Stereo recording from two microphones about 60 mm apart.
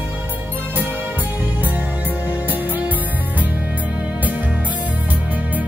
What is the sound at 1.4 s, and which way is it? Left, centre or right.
Music, right.